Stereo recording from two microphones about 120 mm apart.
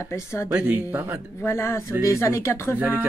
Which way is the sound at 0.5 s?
15° right (ahead or behind).